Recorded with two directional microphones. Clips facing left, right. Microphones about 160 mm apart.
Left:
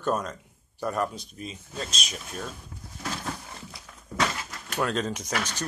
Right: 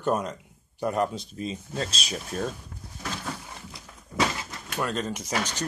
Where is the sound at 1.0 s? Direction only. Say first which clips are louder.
Right 3 dB; 30° right (ahead or behind).